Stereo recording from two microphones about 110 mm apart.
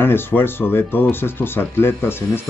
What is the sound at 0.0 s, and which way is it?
Speech, 20° left (ahead or behind).